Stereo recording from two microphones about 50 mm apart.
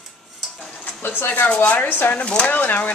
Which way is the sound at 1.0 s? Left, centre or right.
Left.